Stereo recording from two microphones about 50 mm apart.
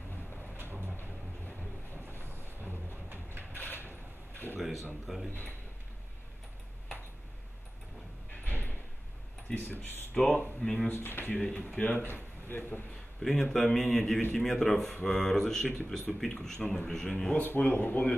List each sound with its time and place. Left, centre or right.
0.6 s a sound: right
2.0 s boat: right
3.5 s mechanisms: left
4.6 s speech: centre
8.5 s door: left
9.6 s speech: left
10.1 s speech: centre
10.9 s speech: left
11.3 s speech: left
11.8 s speech: left
12.1 s a man's voice: left
13.2 s speech: centre
17.4 s speech: left